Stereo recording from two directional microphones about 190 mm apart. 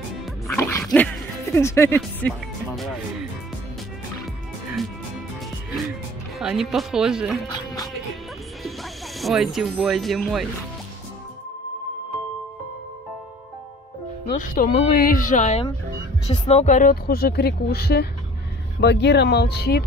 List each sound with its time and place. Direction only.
0.6 s music: 15° left (ahead or behind)
2.0 s speech: 5° left (ahead or behind)
6.4 s speech: centre (ahead or behind)
9.2 s speech: centre (ahead or behind)
14.5 s speech: 45° left (ahead or behind)